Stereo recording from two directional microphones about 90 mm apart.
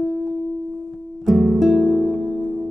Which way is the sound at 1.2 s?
Centre (ahead or behind).